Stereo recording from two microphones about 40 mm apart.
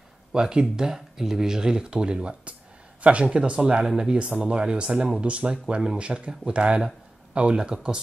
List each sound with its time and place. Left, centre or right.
0.3 s speech: centre
5.2 s speech: right